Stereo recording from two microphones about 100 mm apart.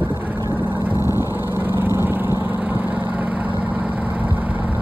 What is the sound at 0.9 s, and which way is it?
Vehicle, 35° left (ahead or behind).